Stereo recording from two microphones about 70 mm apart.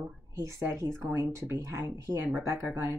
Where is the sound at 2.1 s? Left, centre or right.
Right.